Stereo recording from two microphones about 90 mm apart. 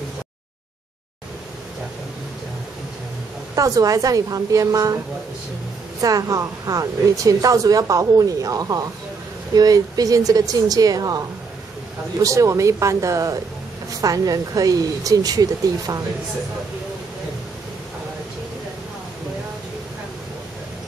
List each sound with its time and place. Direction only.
3.5 s speech: 40° right (ahead or behind)